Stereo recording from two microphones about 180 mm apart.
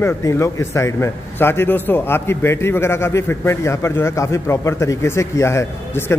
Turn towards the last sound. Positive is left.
turn(degrees=15)  # may be behind; listen again after turning